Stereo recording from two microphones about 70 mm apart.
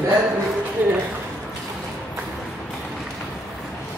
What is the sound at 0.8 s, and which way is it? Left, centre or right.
Speech, right.